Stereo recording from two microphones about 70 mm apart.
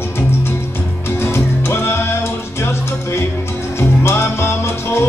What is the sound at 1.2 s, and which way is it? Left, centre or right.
Music, left.